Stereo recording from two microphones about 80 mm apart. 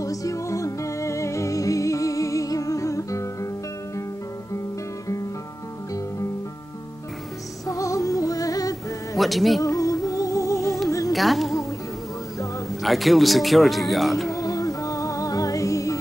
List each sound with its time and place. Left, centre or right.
0.0 s music: left
7.6 s music: left
9.1 s music: centre
9.6 s music: left
11.1 s speech: centre
12.8 s speech: centre
14.3 s music: left